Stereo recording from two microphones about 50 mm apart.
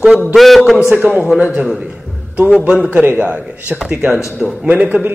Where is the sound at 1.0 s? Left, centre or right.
Right.